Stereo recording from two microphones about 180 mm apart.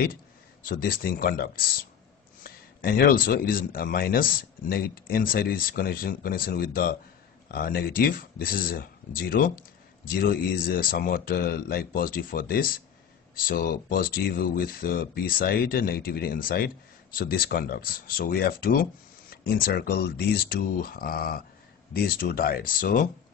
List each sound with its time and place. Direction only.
0.7 s speech: 55° left (ahead or behind)